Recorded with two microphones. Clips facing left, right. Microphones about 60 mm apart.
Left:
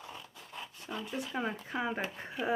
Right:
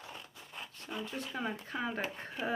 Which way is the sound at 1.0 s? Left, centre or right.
Centre.